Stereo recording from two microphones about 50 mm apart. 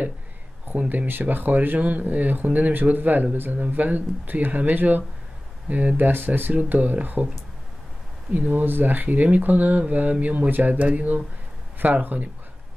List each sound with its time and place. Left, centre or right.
0.7 s speech: right
8.3 s speech: right